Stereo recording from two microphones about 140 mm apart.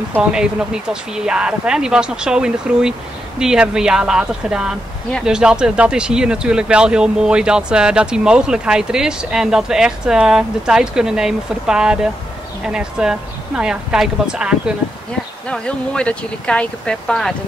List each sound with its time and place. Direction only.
0.1 s speech: 5° right (ahead or behind)
15.5 s speech: 5° left (ahead or behind)